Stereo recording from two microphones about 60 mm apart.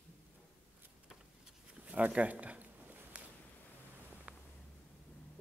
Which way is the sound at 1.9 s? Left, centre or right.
Right.